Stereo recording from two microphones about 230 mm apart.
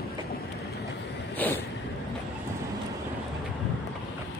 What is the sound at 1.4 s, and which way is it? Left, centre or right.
Vehicle, centre.